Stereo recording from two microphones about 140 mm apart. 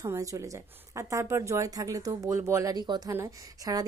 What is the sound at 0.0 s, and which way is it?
A woman's voice, 20° right (ahead or behind).